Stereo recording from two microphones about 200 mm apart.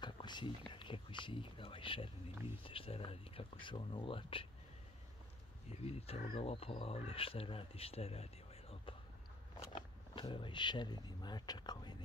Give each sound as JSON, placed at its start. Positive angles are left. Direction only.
{"t": 0.0, "sound": "speech", "side_deg": 20}
{"t": 5.7, "sound": "speech", "side_deg": 30}